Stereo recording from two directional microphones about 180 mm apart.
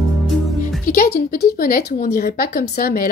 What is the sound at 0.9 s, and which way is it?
A woman's voice, 55° left (ahead or behind).